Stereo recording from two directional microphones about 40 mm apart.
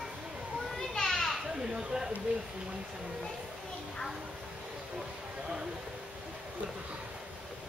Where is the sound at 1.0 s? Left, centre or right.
Centre.